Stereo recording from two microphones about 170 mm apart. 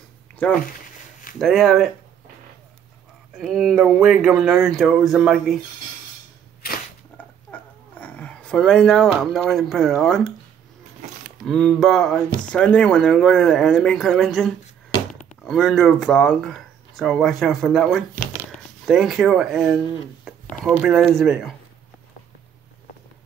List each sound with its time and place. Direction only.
1.4 s speech: centre (ahead or behind)
3.3 s speech: centre (ahead or behind)
6.6 s a sound: 65° left (ahead or behind)
7.2 s a sound: 10° left (ahead or behind)
9.2 s speech: centre (ahead or behind)
11.4 s speech: centre (ahead or behind)